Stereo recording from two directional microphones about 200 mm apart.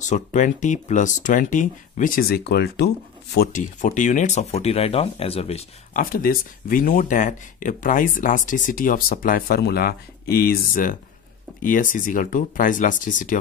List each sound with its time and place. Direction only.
0.0 s speech: 35° left (ahead or behind)
6.0 s speech: 45° left (ahead or behind)